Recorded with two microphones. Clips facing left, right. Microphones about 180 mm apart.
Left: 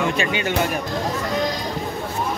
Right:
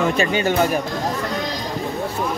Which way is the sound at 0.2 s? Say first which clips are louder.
Right 4 dB; 40° right (ahead or behind).